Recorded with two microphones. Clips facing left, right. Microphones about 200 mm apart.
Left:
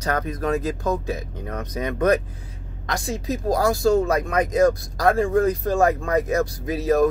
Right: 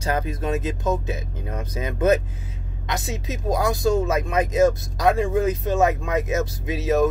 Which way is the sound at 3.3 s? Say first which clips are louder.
Left 2 dB; 20° right (ahead or behind).